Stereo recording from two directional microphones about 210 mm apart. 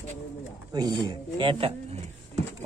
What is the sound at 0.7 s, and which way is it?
Speech, 20° right (ahead or behind).